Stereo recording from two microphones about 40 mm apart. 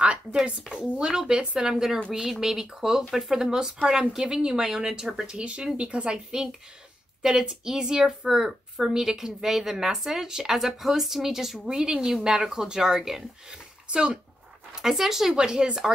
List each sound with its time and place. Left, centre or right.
0.0 s a sound: right
0.5 s a woman's voice: right
6.1 s a woman's voice: centre
13.8 s speech: right
14.8 s a woman's voice: centre
15.3 s a woman's voice: centre